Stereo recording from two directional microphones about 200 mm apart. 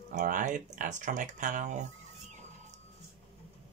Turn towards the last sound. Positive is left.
turn(degrees=-40)  # may be behind; listen again after turning